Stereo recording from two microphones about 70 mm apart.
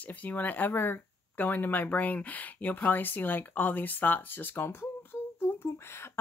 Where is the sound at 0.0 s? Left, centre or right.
Left.